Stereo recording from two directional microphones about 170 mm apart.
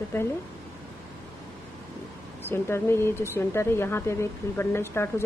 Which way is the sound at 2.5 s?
15° left (ahead or behind).